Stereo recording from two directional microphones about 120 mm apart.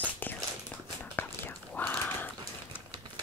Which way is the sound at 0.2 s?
15° left (ahead or behind).